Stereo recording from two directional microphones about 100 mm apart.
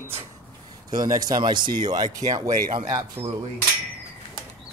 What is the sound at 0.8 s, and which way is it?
Speech, 40° right (ahead or behind).